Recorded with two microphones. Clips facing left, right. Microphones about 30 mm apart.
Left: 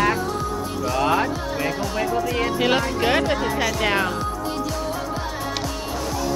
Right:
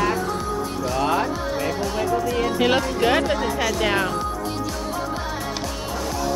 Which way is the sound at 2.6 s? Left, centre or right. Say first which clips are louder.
Right 1 dB; centre.